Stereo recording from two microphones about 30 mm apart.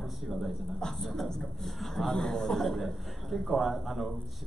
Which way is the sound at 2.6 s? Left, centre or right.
Centre.